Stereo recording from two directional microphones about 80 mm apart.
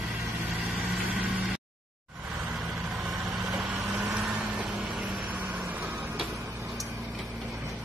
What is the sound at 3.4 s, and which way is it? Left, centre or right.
Vehicle, centre.